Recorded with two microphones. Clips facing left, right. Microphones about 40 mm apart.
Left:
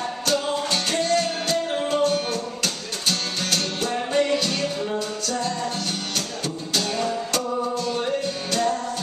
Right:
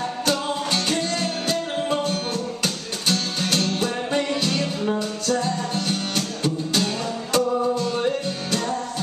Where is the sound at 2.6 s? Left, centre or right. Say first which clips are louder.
Right 1 dB; centre.